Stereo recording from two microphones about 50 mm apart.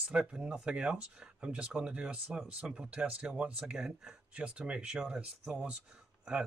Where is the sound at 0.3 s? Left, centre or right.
Centre.